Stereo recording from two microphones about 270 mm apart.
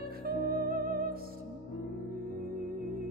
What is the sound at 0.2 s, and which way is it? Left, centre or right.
Music, right.